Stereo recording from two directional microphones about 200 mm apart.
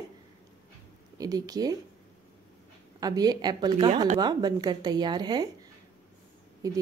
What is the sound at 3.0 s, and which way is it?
A woman's voice, 20° right (ahead or behind).